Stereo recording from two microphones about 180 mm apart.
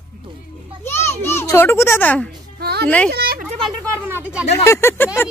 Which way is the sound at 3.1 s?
60° right (ahead or behind).